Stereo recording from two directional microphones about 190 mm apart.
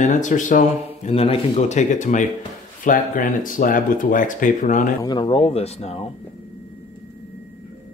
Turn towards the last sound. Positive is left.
turn(degrees=35)  # may be behind; listen again after turning